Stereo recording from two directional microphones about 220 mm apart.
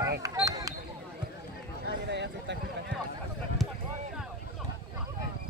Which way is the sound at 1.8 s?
50° right (ahead or behind).